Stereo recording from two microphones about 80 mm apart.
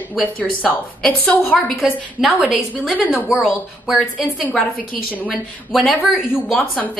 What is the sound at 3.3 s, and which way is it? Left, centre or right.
A woman's voice, centre.